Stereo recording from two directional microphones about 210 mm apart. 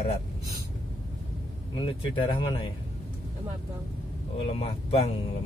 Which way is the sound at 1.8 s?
25° left (ahead or behind).